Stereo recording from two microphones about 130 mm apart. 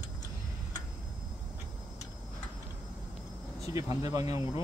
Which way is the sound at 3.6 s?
25° right (ahead or behind).